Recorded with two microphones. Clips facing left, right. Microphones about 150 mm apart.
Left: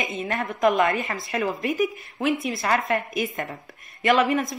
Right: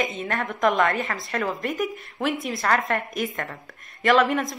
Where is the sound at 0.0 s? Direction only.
Centre (ahead or behind).